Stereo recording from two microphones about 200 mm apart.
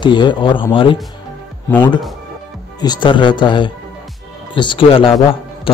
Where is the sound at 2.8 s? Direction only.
20° left (ahead or behind).